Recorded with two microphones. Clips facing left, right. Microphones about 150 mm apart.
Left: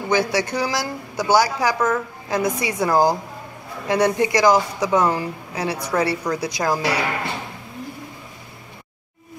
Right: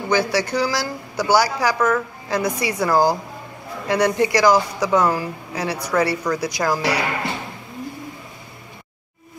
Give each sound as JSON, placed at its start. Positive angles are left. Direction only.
{"t": 0.1, "sound": "a woman's voice", "side_deg": 20}